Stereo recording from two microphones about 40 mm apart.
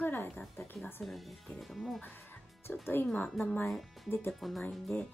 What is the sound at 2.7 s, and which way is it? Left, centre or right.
Speech, left.